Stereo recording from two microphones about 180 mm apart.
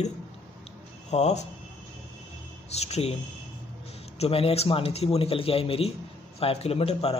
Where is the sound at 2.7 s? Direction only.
35° left (ahead or behind).